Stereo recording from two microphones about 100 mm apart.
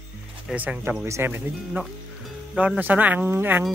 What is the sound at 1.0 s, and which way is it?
Speech, 25° right (ahead or behind).